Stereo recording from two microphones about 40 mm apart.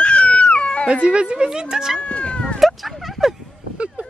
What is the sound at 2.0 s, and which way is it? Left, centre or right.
Cat, left.